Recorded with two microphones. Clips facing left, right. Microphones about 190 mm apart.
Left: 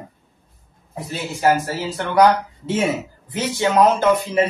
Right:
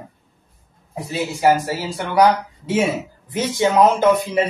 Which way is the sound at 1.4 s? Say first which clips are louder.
Right 1 dB; 10° right (ahead or behind).